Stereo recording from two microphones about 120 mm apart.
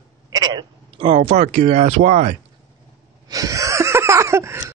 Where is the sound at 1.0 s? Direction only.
65° right (ahead or behind).